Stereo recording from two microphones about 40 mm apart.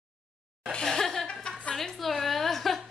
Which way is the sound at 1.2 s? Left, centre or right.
Left.